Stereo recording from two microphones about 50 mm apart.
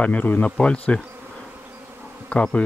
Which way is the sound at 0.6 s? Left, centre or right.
Left.